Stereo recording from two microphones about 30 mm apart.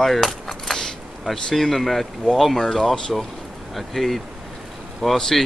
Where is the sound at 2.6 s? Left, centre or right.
Centre.